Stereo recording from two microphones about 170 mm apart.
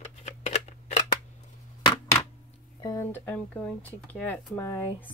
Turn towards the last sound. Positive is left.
turn(degrees=15)  # may be behind; listen again after turning